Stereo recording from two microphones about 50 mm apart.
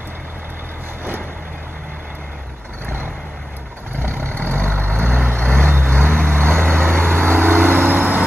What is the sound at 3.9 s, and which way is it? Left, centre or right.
Vehicle, right.